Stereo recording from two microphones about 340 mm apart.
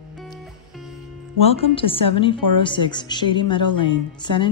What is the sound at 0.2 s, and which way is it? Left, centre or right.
Music, centre.